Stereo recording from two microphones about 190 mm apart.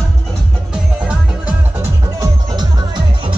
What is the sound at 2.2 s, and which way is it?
Music, 20° right (ahead or behind).